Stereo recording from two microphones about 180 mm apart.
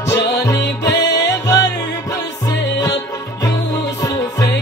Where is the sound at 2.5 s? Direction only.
70° left (ahead or behind).